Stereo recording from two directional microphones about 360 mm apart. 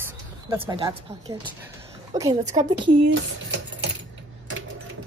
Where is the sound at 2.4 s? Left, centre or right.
Centre.